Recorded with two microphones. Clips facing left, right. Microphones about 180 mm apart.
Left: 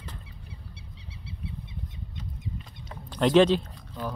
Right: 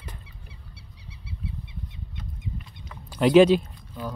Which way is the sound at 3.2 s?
10° right (ahead or behind).